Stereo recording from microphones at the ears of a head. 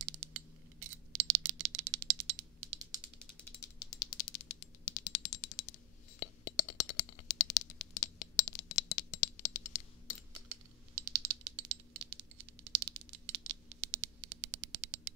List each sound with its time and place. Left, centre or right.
0.0 s a sound: right
3.5 s rattle: left
10.5 s typing: right